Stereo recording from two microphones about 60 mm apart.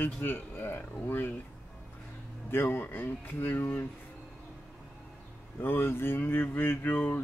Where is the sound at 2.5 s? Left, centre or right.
Left.